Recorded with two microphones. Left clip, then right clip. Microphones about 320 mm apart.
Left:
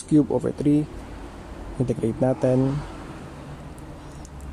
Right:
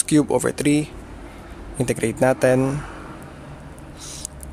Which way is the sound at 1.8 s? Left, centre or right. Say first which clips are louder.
Right 4 dB; right.